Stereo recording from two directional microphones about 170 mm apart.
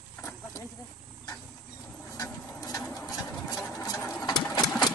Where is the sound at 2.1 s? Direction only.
20° left (ahead or behind).